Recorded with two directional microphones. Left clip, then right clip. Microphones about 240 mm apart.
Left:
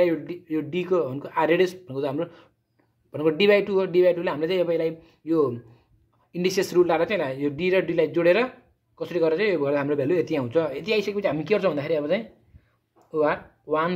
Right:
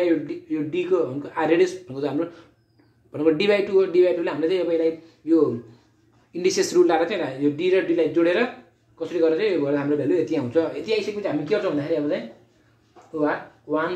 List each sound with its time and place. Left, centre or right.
0.0 s a man's voice: left
13.2 s speech: left